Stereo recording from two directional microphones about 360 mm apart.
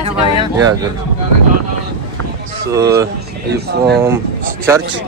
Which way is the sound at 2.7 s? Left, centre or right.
Centre.